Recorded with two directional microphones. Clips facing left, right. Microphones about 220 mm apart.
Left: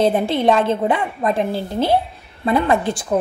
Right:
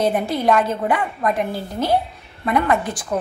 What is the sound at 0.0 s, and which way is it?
A woman's voice, 25° left (ahead or behind).